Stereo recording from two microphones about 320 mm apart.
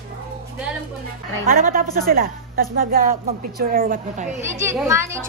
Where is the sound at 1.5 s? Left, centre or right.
Right.